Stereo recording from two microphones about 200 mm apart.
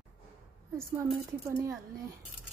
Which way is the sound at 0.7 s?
15° right (ahead or behind).